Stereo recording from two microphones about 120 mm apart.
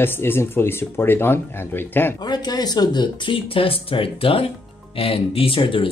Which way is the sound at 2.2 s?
35° left (ahead or behind).